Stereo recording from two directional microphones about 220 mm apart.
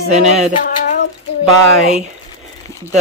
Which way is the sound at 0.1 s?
30° right (ahead or behind).